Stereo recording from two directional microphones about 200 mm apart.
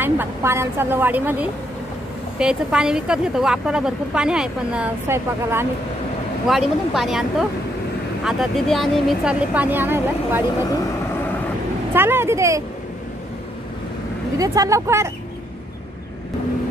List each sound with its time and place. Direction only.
0.0 s a woman's voice: 10° right (ahead or behind)
6.4 s a woman's voice: centre (ahead or behind)
11.9 s a woman's voice: 10° right (ahead or behind)
14.4 s a woman's voice: 15° right (ahead or behind)